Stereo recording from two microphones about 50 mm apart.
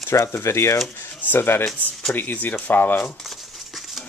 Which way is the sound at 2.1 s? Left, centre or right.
Left.